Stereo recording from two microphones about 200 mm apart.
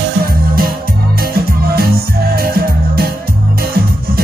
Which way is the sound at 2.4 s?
50° right (ahead or behind).